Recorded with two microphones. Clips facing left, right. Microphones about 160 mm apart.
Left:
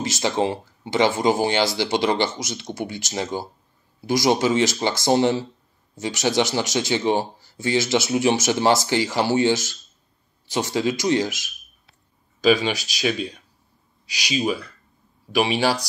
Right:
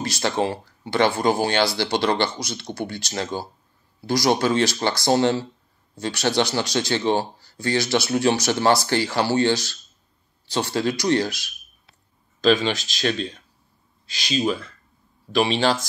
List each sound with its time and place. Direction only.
0.2 s speech: 20° left (ahead or behind)
12.6 s speech: 15° left (ahead or behind)